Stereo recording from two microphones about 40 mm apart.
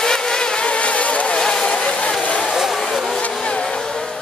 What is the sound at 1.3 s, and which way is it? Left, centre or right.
Vehicle, centre.